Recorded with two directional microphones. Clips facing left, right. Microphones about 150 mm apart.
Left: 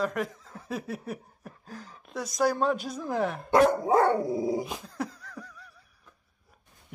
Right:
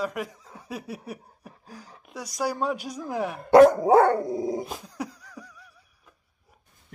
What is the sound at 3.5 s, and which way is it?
Dog, 75° right (ahead or behind).